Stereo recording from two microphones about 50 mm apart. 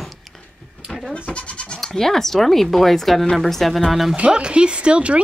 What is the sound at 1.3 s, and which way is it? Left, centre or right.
Goat, left.